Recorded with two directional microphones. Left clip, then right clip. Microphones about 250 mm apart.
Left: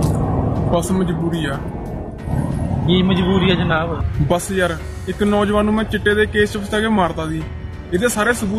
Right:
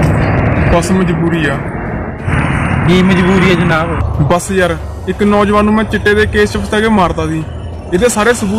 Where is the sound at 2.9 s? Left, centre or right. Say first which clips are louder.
Right 6 dB; centre.